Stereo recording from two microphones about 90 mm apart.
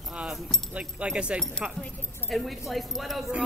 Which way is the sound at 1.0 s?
10° right (ahead or behind).